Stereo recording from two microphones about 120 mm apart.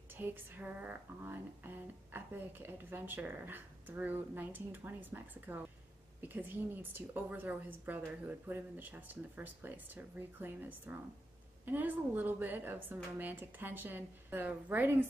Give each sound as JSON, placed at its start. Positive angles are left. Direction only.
{"t": 0.1, "sound": "speech", "side_deg": -15}